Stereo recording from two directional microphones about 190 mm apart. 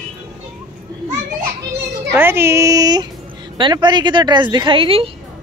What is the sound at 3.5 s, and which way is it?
A woman's voice, 25° right (ahead or behind).